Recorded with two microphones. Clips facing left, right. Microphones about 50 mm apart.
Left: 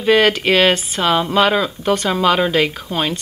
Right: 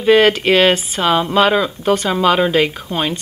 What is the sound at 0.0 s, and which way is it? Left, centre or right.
Speech, centre.